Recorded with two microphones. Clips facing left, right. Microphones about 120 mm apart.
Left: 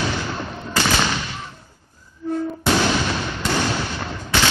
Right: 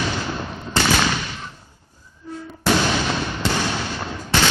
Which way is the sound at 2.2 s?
65° left (ahead or behind).